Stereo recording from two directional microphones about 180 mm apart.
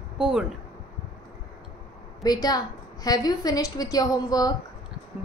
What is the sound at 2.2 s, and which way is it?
A woman's voice, 20° left (ahead or behind).